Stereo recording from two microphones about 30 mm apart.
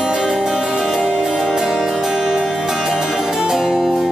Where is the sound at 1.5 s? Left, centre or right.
Centre.